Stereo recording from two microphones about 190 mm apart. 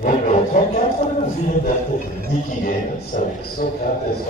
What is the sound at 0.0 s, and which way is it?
Speech, 45° left (ahead or behind).